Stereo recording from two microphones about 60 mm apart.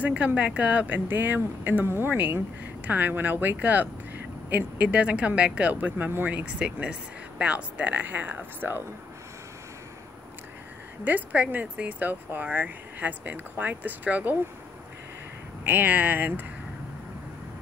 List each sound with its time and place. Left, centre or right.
0.0 s speech: right
11.1 s speech: right
15.6 s speech: right